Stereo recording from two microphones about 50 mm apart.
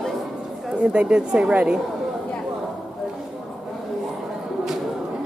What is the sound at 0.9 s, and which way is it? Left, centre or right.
Speech, centre.